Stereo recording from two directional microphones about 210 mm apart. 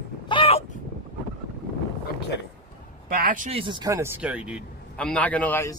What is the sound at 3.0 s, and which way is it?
Speech, 40° right (ahead or behind).